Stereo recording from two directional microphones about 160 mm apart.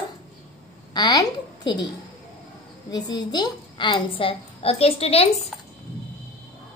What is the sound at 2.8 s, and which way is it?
A woman's voice, 25° left (ahead or behind).